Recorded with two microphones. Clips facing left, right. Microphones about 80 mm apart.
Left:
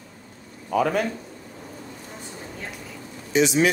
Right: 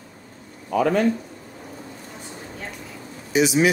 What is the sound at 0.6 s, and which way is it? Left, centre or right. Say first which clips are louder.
Speech: right 2 dB; centre.